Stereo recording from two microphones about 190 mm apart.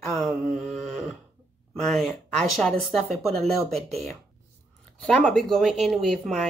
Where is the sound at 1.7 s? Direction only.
Centre (ahead or behind).